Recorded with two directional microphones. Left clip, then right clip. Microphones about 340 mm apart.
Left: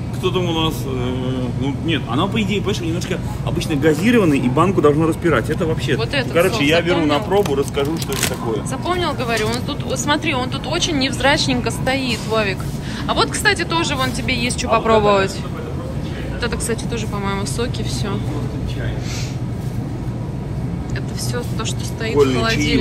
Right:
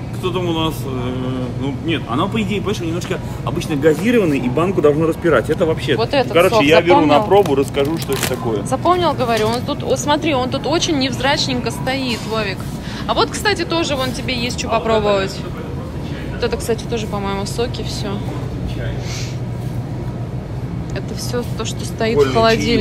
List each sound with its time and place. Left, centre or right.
0.2 s speech: centre
4.1 s speech: centre; by 7.9 s right
8.6 s speech: centre
16.3 s speech: centre
22.0 s speech: centre